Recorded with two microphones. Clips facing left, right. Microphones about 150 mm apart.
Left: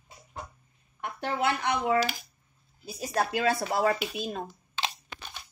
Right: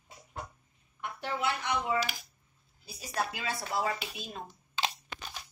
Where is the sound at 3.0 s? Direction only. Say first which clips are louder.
Left 6 dB; 45° left (ahead or behind).